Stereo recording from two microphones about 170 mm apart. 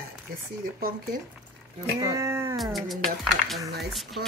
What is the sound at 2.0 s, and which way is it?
Speech, 20° right (ahead or behind).